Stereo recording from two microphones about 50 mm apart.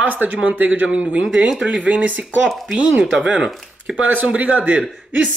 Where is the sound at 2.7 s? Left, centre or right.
Centre.